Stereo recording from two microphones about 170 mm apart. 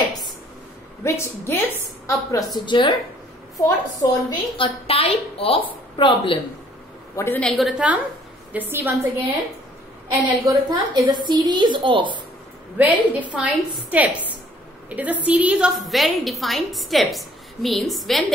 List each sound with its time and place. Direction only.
1.0 s a woman's voice: 15° left (ahead or behind)
7.2 s a woman's voice: 10° left (ahead or behind); by 8.9 s 10° right (ahead or behind)
10.2 s a woman's voice: 25° right (ahead or behind)
12.7 s a woman's voice: 10° right (ahead or behind)